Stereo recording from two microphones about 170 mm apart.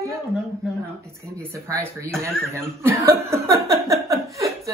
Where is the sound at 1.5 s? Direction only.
15° right (ahead or behind).